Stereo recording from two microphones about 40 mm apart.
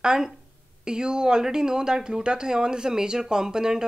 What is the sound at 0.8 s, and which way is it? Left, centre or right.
A woman's voice, right.